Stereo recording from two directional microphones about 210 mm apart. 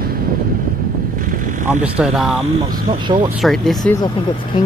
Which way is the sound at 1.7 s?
5° right (ahead or behind).